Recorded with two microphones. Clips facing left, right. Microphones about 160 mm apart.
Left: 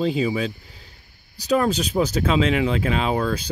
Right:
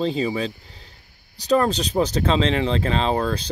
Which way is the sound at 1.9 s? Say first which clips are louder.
Right 1 dB; 30° right (ahead or behind).